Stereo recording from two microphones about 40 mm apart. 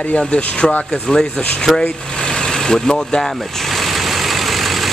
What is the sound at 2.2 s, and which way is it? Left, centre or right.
Vehicle, centre.